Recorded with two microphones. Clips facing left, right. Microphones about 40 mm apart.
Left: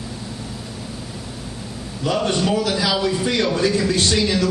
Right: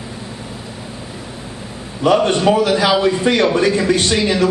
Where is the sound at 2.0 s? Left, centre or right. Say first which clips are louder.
Right 7 dB; right.